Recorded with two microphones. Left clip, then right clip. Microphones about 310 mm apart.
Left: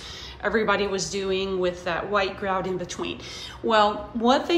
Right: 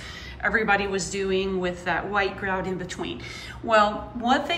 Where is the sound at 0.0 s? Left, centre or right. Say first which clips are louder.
Right 1 dB; centre.